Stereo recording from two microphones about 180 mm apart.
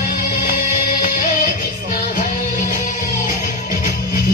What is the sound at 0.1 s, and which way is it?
Music, 55° left (ahead or behind).